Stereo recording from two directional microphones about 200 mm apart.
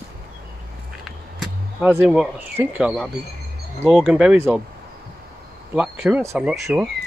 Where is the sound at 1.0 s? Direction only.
Centre (ahead or behind).